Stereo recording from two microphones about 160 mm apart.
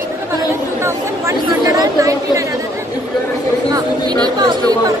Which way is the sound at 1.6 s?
20° right (ahead or behind).